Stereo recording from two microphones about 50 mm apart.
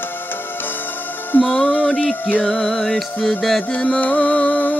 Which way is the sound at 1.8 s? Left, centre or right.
Centre.